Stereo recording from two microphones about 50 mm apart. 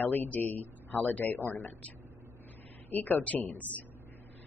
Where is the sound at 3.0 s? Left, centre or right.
Left.